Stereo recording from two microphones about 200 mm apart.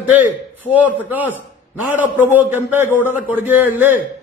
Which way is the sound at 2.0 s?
10° right (ahead or behind).